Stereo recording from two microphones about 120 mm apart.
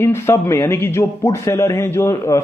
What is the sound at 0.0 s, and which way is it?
A man's voice, 20° left (ahead or behind).